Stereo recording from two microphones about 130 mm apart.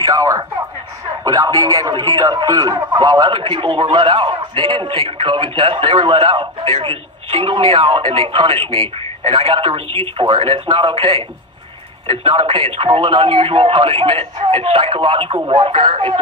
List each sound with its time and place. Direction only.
0.0 s speech: 25° right (ahead or behind)